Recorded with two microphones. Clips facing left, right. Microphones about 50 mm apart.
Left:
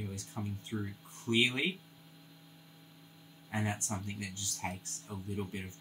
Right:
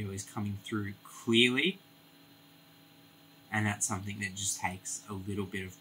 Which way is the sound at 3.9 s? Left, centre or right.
Right.